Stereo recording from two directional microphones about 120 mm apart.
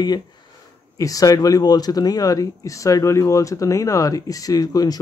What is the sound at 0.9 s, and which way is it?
Speech, 30° left (ahead or behind).